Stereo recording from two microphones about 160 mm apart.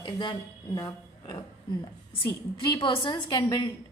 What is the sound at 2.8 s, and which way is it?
Speech, 30° left (ahead or behind).